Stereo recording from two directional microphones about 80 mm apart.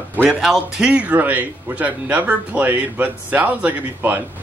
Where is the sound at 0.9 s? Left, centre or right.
Centre.